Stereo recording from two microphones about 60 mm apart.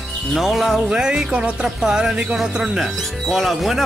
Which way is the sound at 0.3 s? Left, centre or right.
Centre.